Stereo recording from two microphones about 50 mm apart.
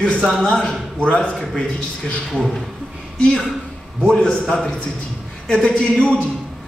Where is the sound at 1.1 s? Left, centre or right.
Left.